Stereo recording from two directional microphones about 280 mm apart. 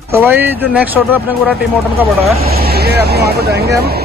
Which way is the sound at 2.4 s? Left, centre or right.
Right.